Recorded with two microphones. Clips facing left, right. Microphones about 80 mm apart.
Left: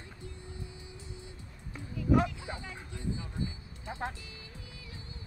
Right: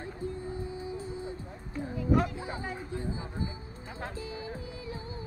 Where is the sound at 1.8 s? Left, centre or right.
Right.